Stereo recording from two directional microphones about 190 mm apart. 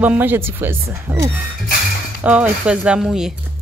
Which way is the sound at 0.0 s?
10° right (ahead or behind).